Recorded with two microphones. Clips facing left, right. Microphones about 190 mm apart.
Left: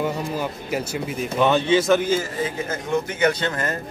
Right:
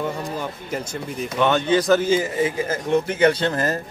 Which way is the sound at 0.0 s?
10° left (ahead or behind).